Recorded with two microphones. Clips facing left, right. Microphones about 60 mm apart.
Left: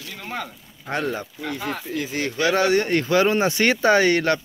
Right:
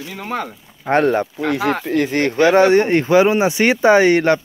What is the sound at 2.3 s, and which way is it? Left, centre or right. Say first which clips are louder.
Speech: right 7 dB; right.